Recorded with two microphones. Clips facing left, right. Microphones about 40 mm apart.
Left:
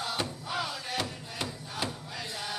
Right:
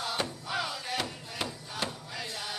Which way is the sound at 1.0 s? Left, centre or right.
Centre.